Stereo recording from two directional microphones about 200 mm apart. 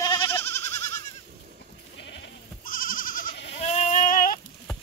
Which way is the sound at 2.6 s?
45° left (ahead or behind).